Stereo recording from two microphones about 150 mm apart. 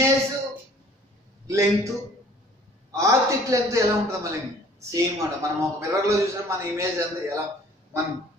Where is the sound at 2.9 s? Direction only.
20° right (ahead or behind).